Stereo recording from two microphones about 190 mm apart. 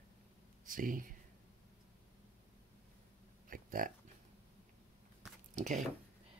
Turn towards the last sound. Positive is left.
turn(degrees=-40)  # may be behind; listen again after turning